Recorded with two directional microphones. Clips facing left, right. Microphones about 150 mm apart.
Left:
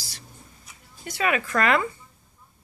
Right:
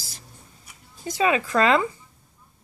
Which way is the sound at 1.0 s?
20° right (ahead or behind).